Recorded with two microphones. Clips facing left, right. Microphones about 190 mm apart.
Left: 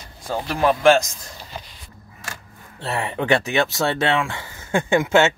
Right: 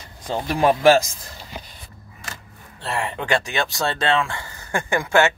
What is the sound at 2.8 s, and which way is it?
Speech, 20° left (ahead or behind).